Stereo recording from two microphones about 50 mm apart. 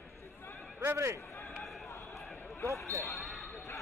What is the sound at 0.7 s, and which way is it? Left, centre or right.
Speech, right.